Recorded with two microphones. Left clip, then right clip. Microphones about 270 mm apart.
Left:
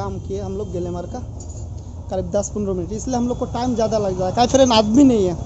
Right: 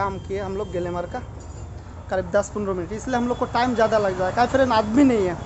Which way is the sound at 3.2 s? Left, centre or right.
Right.